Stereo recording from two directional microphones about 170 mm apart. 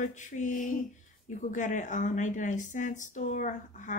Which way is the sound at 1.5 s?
45° left (ahead or behind).